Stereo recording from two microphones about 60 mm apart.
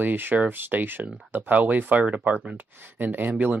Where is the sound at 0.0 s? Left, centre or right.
Right.